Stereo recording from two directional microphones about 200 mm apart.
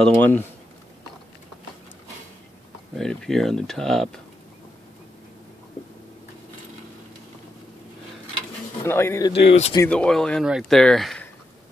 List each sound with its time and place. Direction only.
0.1 s speech: 10° left (ahead or behind)
2.9 s speech: centre (ahead or behind)
8.8 s speech: 10° left (ahead or behind)
9.3 s speech: 35° left (ahead or behind)
9.8 s speech: 5° left (ahead or behind)